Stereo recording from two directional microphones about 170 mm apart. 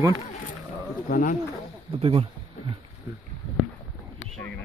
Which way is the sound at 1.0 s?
50° left (ahead or behind).